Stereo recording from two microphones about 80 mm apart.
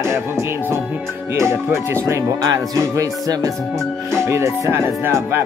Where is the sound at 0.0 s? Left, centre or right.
Right.